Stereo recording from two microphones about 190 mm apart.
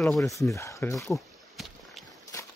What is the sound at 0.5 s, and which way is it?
Speech, 15° left (ahead or behind).